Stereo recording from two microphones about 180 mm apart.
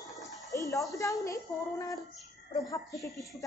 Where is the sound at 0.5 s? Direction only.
20° left (ahead or behind).